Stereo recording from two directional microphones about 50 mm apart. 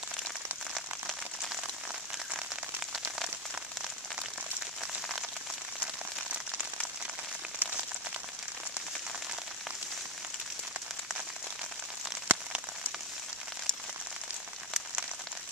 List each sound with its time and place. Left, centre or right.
12.3 s rain on surface: right